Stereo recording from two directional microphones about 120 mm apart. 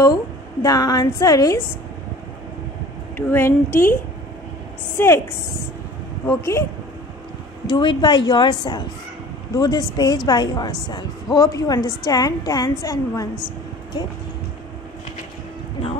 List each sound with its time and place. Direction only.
0.0 s a woman's voice: 30° left (ahead or behind)
3.2 s a woman's voice: 20° left (ahead or behind)
4.9 s a woman's voice: 20° left (ahead or behind)
6.2 s a woman's voice: 25° left (ahead or behind)
7.6 s a woman's voice: 40° left (ahead or behind)